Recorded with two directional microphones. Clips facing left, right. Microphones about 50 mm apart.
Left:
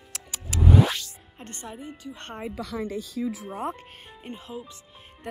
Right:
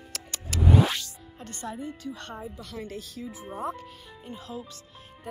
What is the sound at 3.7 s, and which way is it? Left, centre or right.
Music, left.